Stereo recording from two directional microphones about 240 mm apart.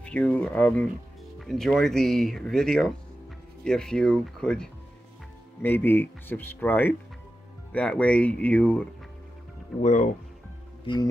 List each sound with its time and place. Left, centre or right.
0.0 s speech: centre
9.8 s speech: left